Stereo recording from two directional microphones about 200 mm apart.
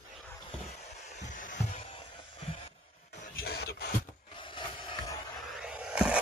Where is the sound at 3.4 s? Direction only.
50° left (ahead or behind).